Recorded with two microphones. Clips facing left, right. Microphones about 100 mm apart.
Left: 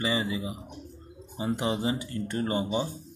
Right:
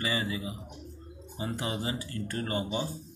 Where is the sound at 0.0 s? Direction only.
25° left (ahead or behind).